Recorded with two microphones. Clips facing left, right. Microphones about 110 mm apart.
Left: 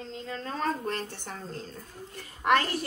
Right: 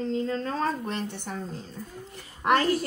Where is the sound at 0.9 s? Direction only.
15° right (ahead or behind).